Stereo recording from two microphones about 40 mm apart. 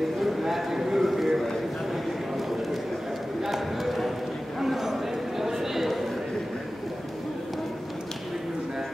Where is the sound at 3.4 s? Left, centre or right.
Centre.